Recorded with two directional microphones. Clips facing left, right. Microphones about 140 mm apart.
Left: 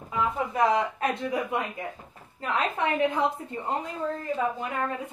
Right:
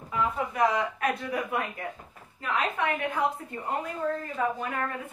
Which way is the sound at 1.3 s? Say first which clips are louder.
Left 2 dB; 25° left (ahead or behind).